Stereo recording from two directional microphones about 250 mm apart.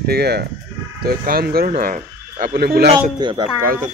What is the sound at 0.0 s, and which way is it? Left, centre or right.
Speech, right.